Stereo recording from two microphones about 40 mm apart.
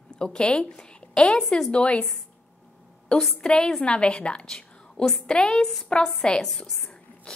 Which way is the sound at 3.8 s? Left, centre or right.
Left.